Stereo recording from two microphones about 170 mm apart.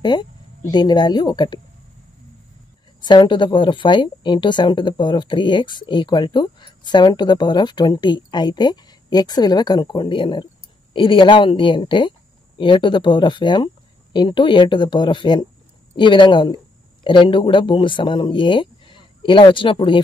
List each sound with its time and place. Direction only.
0.0 s speech: 25° left (ahead or behind)
3.0 s speech: 25° left (ahead or behind)